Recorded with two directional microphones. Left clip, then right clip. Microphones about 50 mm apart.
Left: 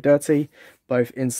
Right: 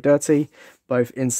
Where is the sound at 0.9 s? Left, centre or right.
Right.